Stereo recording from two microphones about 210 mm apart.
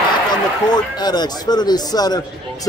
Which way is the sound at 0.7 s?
20° left (ahead or behind).